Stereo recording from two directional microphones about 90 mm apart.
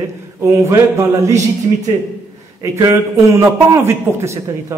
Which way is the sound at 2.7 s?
35° right (ahead or behind).